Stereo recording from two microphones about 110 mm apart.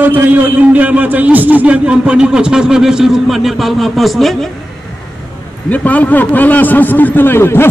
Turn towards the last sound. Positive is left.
turn(degrees=20)  # may be behind; listen again after turning